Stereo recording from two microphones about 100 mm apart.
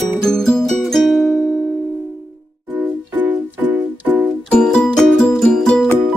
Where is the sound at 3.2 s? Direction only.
15° right (ahead or behind).